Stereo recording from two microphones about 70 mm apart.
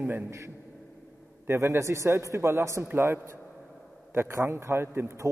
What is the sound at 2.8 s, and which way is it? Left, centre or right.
A man's voice, right.